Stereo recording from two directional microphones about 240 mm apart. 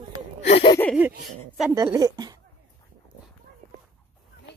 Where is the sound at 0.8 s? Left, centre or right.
Centre.